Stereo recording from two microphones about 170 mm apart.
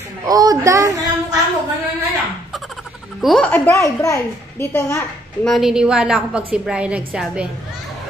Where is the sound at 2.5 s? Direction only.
Centre (ahead or behind).